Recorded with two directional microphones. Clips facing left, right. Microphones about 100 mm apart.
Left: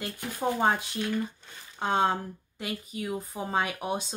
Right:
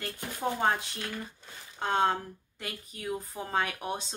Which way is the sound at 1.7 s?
10° left (ahead or behind).